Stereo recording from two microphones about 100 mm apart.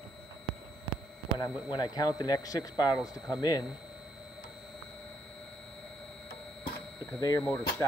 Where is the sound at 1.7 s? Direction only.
40° left (ahead or behind).